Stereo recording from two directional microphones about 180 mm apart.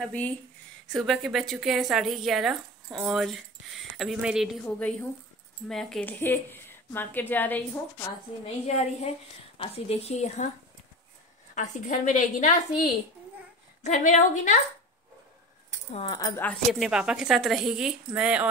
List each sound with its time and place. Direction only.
0.0 s a woman's voice: 10° left (ahead or behind)
8.6 s speech: 35° left (ahead or behind)
11.5 s a woman's voice: 45° left (ahead or behind)
13.8 s a woman's voice: 45° left (ahead or behind)
15.9 s speech: 30° left (ahead or behind)
16.3 s a woman's voice: 10° left (ahead or behind)
16.7 s a woman's voice: 5° right (ahead or behind)